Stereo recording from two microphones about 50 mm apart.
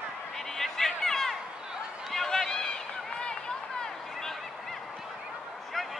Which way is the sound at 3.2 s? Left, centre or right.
Centre.